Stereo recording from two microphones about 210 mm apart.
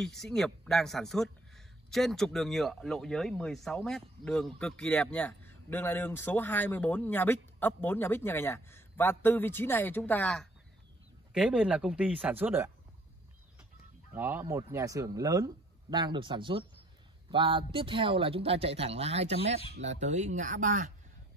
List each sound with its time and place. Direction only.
0.0 s speech: centre (ahead or behind)
14.1 s speech: 10° right (ahead or behind); by 20.9 s 40° right (ahead or behind)